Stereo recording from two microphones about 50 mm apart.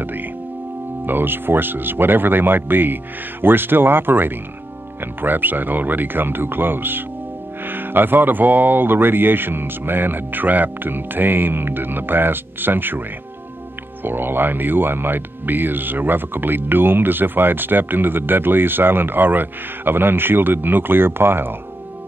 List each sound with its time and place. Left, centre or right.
0.0 s music: right
1.0 s speech: right
14.0 s speech: right